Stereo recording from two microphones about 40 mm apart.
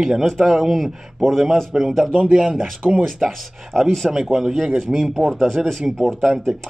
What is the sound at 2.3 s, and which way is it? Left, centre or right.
Speech, right.